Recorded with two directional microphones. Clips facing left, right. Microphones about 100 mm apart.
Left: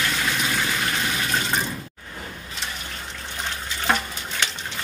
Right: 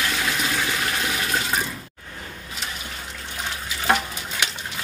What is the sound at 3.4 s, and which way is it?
Water, 5° right (ahead or behind).